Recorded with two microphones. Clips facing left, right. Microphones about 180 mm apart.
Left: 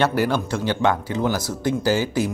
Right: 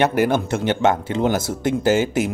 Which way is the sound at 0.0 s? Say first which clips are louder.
Right 3 dB; 20° right (ahead or behind).